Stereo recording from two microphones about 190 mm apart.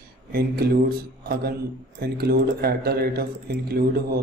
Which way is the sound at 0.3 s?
55° right (ahead or behind).